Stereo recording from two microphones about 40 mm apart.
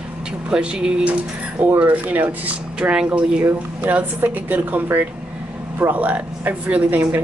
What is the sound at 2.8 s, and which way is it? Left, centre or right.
Speech, right.